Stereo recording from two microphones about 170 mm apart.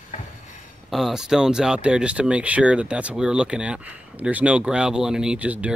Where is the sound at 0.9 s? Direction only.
Centre (ahead or behind).